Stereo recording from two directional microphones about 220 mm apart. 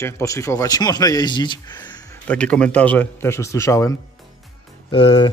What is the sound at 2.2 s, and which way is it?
Speech, 5° left (ahead or behind).